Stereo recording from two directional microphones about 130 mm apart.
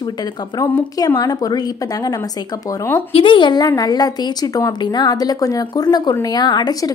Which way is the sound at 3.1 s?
40° left (ahead or behind).